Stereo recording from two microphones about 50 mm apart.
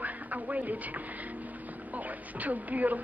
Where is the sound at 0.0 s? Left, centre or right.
Right.